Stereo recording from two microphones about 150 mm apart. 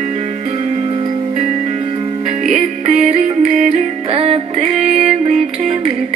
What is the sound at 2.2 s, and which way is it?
Music, 45° right (ahead or behind).